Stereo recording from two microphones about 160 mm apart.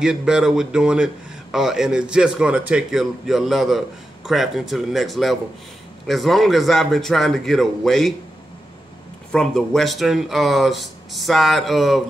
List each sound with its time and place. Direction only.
0.0 s speech: 5° right (ahead or behind)
9.3 s speech: 5° left (ahead or behind)